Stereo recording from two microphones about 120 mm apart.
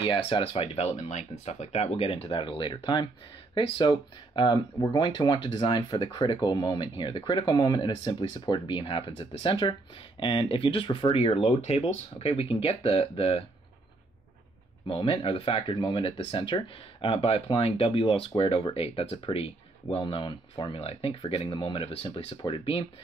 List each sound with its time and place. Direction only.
0.0 s speech: 45° left (ahead or behind)
0.9 s speech: 70° left (ahead or behind); by 13.5 s 55° left (ahead or behind)
14.9 s speech: 45° left (ahead or behind)